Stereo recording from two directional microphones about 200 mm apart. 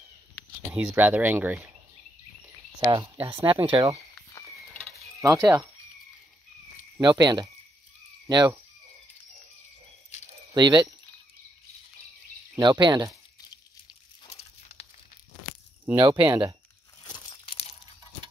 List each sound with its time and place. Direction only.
0.7 s speech: 5° right (ahead or behind)
2.8 s speech: 20° right (ahead or behind)
5.2 s speech: 15° right (ahead or behind)
7.0 s speech: 20° right (ahead or behind)
10.5 s speech: 20° right (ahead or behind)
12.5 s speech: 20° right (ahead or behind)
14.2 s a sound: 30° left (ahead or behind)
16.0 s speech: 20° right (ahead or behind)
17.0 s crumpling: 20° left (ahead or behind)